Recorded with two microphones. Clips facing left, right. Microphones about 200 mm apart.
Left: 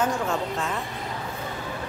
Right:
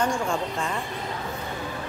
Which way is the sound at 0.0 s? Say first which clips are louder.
Even; 5° left (ahead or behind).